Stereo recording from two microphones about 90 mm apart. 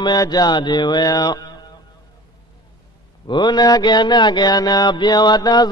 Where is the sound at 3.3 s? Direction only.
55° left (ahead or behind).